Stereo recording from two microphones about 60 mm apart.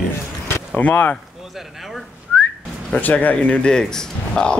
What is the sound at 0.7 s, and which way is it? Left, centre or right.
Speech, left.